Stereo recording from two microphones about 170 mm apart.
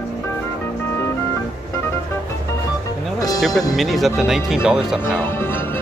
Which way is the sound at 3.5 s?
20° left (ahead or behind).